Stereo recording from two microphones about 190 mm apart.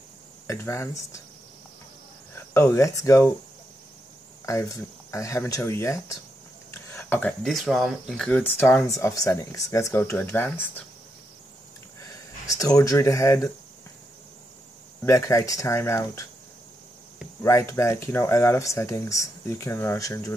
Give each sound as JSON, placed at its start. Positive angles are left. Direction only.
{"t": 0.5, "sound": "speech", "side_deg": 15}
{"t": 2.3, "sound": "speech", "side_deg": 15}
{"t": 5.1, "sound": "speech", "side_deg": 15}
{"t": 12.4, "sound": "speech", "side_deg": 15}
{"t": 15.0, "sound": "speech", "side_deg": 15}
{"t": 17.4, "sound": "speech", "side_deg": 15}